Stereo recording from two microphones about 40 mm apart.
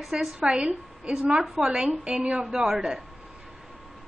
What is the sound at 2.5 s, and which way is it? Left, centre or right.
Speech, centre.